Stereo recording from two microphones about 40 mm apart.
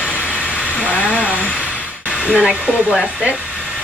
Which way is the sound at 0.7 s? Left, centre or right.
Left.